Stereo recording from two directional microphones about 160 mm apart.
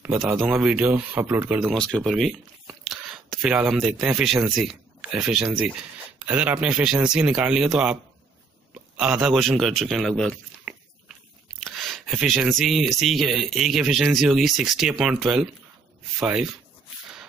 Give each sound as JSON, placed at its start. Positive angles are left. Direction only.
{"t": 0.0, "sound": "speech", "side_deg": -15}
{"t": 1.6, "sound": "speech", "side_deg": 0}